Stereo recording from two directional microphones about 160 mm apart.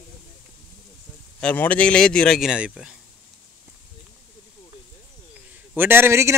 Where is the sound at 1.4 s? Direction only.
10° left (ahead or behind); by 3.0 s 5° right (ahead or behind).